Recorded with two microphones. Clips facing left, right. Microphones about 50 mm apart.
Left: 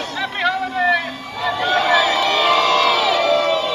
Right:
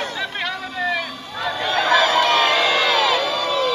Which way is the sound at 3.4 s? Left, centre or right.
Centre.